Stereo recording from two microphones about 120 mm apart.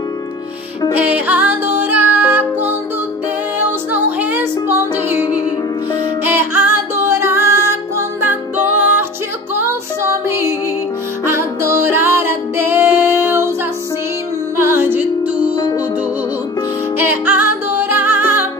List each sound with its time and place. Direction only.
0.9 s music: 10° right (ahead or behind)
14.6 s music: 20° right (ahead or behind)
15.5 s music: 40° left (ahead or behind)
17.0 s music: 15° right (ahead or behind)